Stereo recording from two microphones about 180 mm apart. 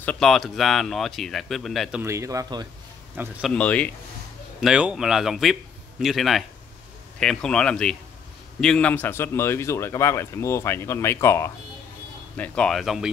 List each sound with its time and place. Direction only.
0.0 s speech: 5° left (ahead or behind)
2.0 s speech: 15° right (ahead or behind)
3.2 s speech: 5° right (ahead or behind)
3.5 s a man's voice: 5° left (ahead or behind)
4.6 s a man's voice: 5° right (ahead or behind); by 11.5 s 15° left (ahead or behind)
12.4 s speech: 5° left (ahead or behind)